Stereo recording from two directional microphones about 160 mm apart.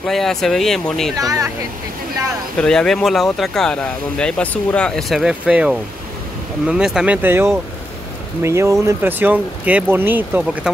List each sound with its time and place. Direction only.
0.0 s speech: centre (ahead or behind)
1.1 s speech: 20° right (ahead or behind)
2.6 s speech: 5° left (ahead or behind)